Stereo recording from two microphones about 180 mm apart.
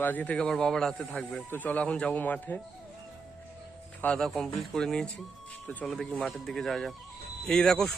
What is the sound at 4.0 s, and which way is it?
Speech, 5° left (ahead or behind).